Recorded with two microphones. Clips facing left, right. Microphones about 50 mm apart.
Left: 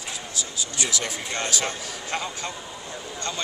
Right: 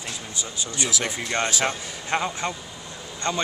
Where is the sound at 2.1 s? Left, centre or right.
Right.